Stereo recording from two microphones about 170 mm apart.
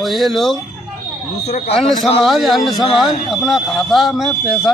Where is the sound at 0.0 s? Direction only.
Centre (ahead or behind).